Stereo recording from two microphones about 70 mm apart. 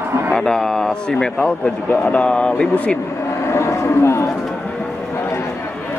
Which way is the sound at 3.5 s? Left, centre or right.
Left.